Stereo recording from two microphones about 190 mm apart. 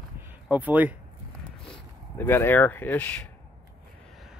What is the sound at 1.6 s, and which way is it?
Speech, 10° left (ahead or behind).